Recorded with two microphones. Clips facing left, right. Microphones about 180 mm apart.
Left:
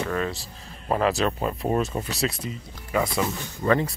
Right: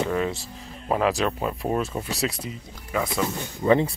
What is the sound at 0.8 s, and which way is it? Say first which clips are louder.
Speech: even; 5° right (ahead or behind).